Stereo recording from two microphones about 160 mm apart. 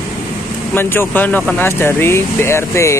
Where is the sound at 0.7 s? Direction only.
15° left (ahead or behind).